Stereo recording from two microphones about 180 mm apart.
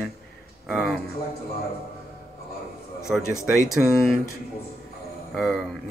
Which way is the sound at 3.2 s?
15° left (ahead or behind).